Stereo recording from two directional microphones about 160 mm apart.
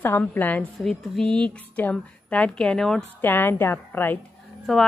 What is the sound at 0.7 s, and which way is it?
Speech, centre (ahead or behind).